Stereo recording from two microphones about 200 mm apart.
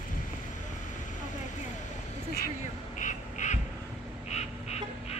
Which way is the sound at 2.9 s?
40° left (ahead or behind).